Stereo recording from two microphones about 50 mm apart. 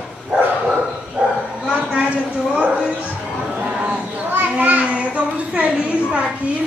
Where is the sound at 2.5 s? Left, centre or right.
Right.